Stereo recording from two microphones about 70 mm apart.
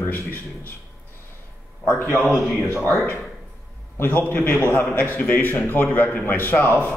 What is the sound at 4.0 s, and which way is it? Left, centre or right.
A man's voice, left.